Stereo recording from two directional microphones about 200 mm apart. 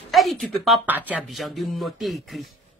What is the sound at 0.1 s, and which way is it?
Speech, centre (ahead or behind).